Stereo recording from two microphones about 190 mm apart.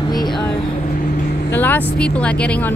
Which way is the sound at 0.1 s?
25° left (ahead or behind).